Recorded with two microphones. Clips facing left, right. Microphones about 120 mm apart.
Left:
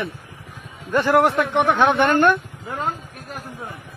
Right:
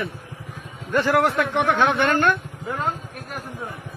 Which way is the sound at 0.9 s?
20° left (ahead or behind).